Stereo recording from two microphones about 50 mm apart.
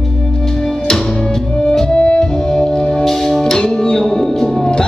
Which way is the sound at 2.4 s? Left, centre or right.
Centre.